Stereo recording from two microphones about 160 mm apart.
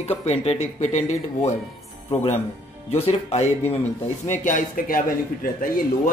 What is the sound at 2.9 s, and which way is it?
Speech, 40° left (ahead or behind).